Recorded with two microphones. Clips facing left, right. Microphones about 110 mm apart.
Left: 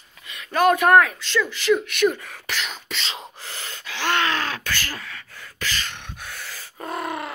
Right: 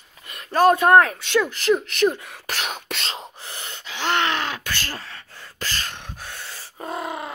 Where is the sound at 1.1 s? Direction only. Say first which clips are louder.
Right 3 dB; 55° right (ahead or behind).